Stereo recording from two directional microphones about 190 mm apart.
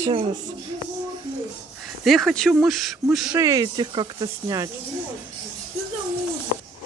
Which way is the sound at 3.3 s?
20° right (ahead or behind).